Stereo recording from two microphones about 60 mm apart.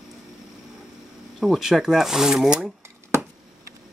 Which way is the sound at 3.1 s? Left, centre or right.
Right.